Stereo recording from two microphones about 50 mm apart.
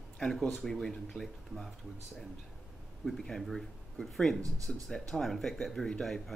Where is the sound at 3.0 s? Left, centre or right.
Centre.